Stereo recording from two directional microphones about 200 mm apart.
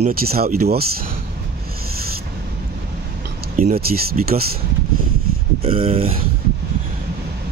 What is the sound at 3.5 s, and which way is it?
Speech, 35° right (ahead or behind).